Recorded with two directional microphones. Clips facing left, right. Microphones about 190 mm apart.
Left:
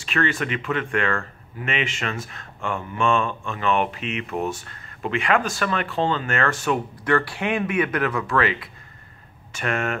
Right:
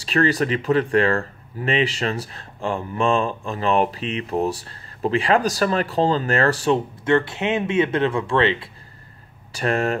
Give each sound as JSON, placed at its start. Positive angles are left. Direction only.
{"t": 0.0, "sound": "speech", "side_deg": -35}